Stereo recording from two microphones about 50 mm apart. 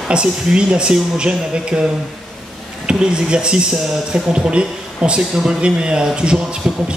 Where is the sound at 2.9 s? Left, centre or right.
Centre.